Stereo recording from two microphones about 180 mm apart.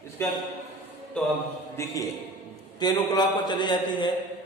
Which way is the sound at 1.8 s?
15° left (ahead or behind).